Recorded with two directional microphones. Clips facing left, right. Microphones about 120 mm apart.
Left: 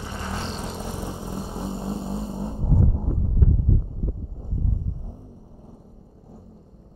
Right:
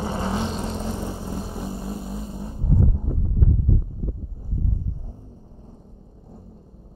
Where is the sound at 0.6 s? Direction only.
5° left (ahead or behind); by 3.0 s 30° left (ahead or behind).